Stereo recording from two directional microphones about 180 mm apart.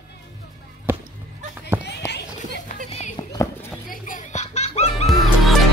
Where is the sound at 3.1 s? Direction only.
15° left (ahead or behind).